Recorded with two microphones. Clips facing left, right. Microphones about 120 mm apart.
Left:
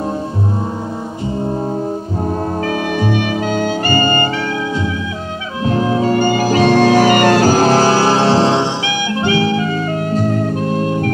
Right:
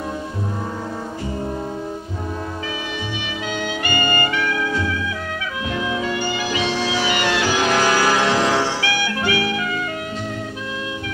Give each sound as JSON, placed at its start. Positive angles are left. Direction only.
{"t": 3.0, "sound": "music", "side_deg": 50}
{"t": 5.7, "sound": "music", "side_deg": 40}